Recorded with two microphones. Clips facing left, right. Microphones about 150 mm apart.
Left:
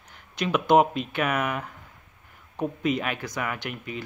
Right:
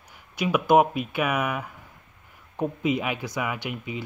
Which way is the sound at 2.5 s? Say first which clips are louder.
Right 1 dB; 15° right (ahead or behind).